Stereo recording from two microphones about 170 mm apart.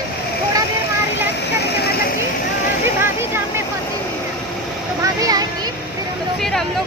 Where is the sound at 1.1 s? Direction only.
75° left (ahead or behind).